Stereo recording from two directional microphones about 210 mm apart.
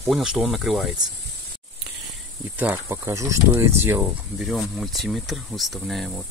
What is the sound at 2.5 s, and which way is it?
Speech, 10° right (ahead or behind).